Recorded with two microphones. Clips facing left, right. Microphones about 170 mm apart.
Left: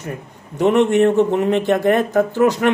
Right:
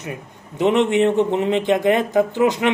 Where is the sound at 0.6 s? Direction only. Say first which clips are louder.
Left 2 dB; 20° right (ahead or behind).